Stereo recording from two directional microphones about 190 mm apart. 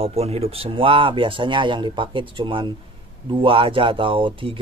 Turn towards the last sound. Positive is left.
turn(degrees=-25)  # may be behind; listen again after turning